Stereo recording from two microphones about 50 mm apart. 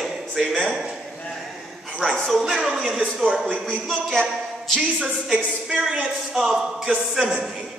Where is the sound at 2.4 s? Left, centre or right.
Centre.